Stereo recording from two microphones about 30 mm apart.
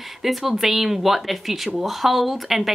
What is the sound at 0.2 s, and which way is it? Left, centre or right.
A woman's voice, centre.